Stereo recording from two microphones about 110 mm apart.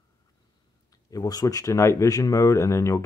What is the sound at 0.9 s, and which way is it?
Speech, 35° left (ahead or behind).